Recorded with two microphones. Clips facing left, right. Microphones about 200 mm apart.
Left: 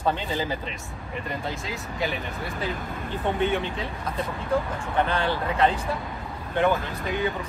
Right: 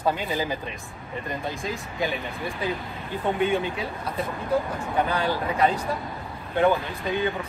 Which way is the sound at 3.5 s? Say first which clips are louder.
Right 2 dB; 10° right (ahead or behind).